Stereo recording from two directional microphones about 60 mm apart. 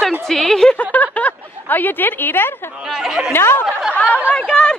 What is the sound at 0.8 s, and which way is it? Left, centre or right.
A woman's voice, left.